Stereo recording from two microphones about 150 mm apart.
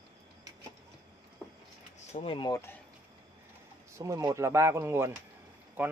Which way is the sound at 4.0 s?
20° right (ahead or behind).